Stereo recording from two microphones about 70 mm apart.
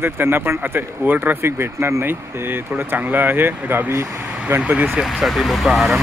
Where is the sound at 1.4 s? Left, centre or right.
Right.